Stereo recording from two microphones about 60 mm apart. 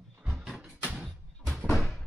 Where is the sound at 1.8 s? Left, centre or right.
Centre.